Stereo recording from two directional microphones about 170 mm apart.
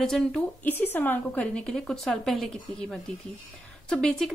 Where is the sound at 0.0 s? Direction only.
5° left (ahead or behind).